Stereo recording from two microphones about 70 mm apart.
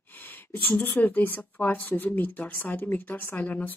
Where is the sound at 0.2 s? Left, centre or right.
Left.